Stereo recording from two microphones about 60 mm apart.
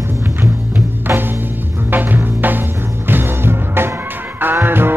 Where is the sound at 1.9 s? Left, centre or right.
Right.